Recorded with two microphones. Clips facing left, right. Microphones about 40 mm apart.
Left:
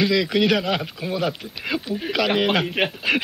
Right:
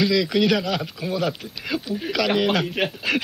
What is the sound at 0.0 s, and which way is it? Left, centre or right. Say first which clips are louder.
Speech: even; centre.